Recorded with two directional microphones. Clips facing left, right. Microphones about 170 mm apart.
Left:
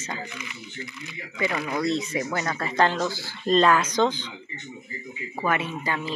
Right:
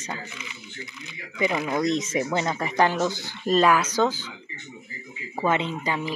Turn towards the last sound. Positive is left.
turn(degrees=-15)  # may be behind; listen again after turning